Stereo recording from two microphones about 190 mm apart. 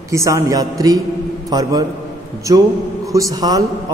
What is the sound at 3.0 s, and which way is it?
Speech, 15° right (ahead or behind).